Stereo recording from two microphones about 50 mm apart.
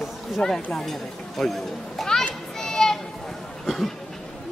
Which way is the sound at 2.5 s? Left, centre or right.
Centre.